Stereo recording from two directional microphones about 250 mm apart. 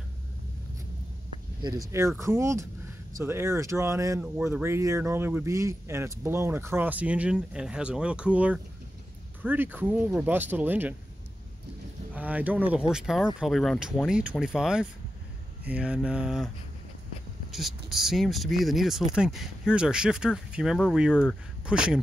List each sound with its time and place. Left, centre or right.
1.6 s speech: centre
12.1 s speech: centre
17.5 s speech: centre